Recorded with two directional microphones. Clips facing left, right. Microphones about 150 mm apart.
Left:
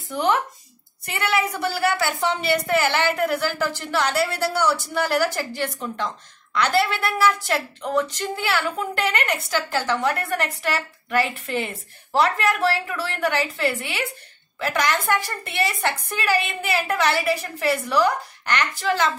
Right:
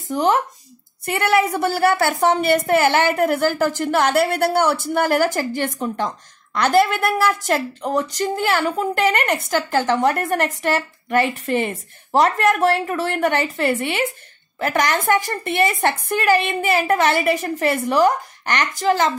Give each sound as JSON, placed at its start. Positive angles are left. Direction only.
{"t": 0.1, "sound": "speech", "side_deg": -40}
{"t": 1.0, "sound": "a woman's voice", "side_deg": -50}